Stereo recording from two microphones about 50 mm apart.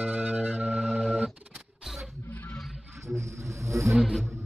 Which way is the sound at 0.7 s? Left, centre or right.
Centre.